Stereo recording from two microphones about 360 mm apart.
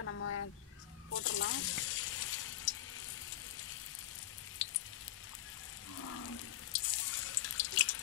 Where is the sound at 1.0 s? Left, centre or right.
Left.